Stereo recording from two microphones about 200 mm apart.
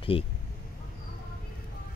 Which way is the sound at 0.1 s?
25° left (ahead or behind).